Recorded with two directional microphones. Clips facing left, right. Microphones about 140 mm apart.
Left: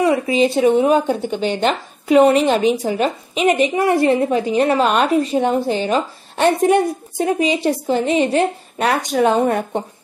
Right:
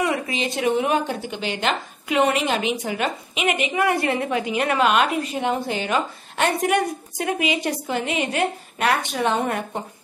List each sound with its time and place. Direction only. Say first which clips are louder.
0.0 s speech: left 8 dB; 35° left (ahead or behind)